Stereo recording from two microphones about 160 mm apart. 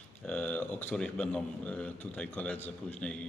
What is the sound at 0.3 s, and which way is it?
A man's voice, 10° left (ahead or behind).